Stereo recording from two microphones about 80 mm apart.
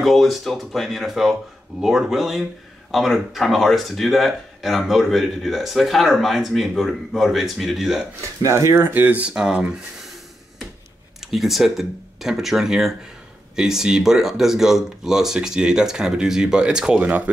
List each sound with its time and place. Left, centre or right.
0.0 s speech: centre
8.4 s speech: right
9.3 s speech: centre
11.2 s speech: centre